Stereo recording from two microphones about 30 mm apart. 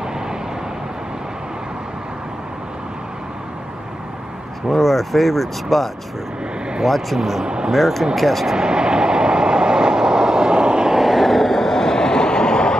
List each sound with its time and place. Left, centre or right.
4.6 s speech: centre
7.4 s speech: right
7.7 s speech: centre
8.5 s train: right
10.9 s vehicle: centre; by 12.7 s left